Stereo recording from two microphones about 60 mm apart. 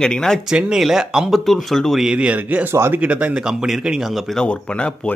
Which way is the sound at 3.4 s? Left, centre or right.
Centre.